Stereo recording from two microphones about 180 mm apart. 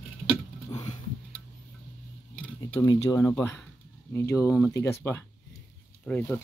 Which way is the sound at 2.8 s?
20° left (ahead or behind).